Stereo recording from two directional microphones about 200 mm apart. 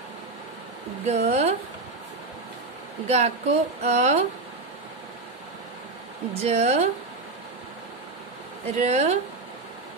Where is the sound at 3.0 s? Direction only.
35° right (ahead or behind).